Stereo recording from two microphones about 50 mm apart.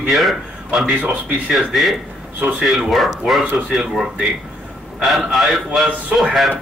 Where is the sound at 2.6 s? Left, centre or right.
Centre.